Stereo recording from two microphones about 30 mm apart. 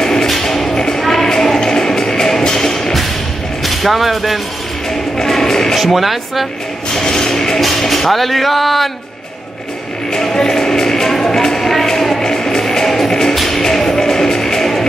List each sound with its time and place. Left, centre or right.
0.0 s music: centre
1.0 s a sound: centre
1.8 s music: centre
3.6 s speech: centre
5.2 s music: centre
5.8 s speech: centre
6.9 s music: centre
7.6 s speech: centre
10.1 s music: left